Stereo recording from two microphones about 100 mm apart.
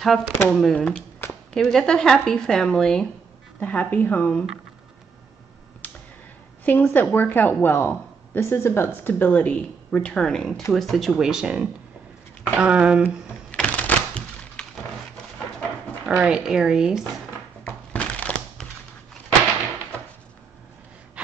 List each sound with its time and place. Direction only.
0.0 s speech: centre (ahead or behind)
6.6 s a woman's voice: 20° left (ahead or behind); by 13.1 s 10° right (ahead or behind)
13.5 s thunk: 15° left (ahead or behind)
16.2 s speech: 10° right (ahead or behind)
17.6 s crushing: 15° left (ahead or behind)